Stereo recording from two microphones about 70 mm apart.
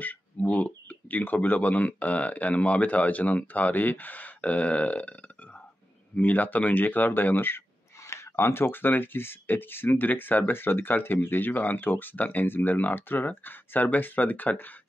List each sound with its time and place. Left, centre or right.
0.0 s speech: left
6.1 s speech: left